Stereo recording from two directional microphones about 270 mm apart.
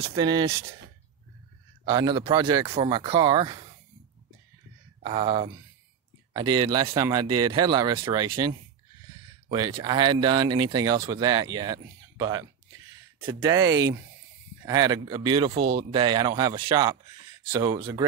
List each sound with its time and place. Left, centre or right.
0.1 s speech: centre
1.9 s speech: centre
5.0 s speech: centre